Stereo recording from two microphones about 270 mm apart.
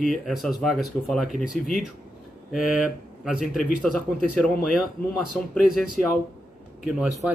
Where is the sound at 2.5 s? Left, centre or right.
Centre.